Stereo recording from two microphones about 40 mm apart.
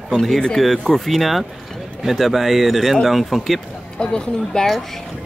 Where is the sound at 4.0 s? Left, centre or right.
Left.